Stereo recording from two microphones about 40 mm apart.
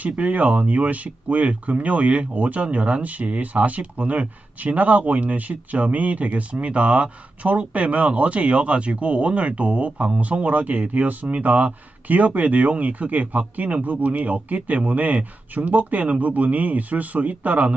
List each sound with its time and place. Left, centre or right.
0.0 s speech: right